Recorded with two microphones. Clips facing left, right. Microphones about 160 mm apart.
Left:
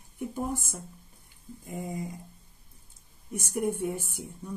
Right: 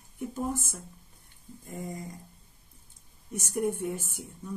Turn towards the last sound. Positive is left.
turn(degrees=10)  # may be behind; listen again after turning